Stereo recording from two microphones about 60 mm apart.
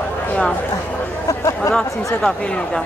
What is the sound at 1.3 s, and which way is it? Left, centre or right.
Speech, left.